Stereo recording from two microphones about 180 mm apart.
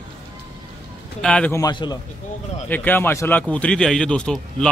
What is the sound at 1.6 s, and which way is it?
Speech, 25° left (ahead or behind).